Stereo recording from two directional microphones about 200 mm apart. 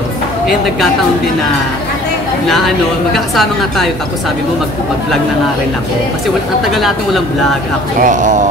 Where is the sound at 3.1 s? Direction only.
Centre (ahead or behind).